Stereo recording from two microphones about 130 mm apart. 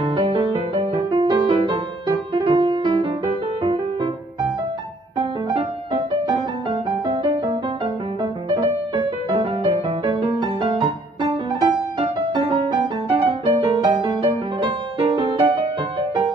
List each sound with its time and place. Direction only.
0.0 s music: 40° right (ahead or behind)
5.5 s music: 50° right (ahead or behind)
6.2 s music: 40° right (ahead or behind)
12.0 s music: 45° right (ahead or behind)
13.6 s music: 30° right (ahead or behind)
13.9 s music: 45° right (ahead or behind)